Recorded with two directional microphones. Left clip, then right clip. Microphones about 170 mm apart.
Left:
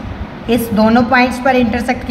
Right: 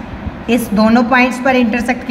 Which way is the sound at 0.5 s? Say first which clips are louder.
Even; 10° right (ahead or behind).